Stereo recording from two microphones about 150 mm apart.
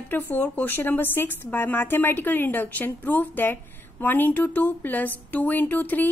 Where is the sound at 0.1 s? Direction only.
10° left (ahead or behind).